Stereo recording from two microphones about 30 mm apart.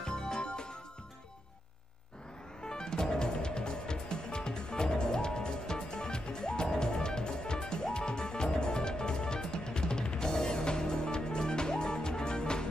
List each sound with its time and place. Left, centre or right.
0.0 s music: left
2.6 s music: left